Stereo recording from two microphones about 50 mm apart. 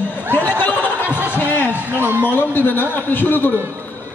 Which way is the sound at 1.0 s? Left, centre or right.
Right.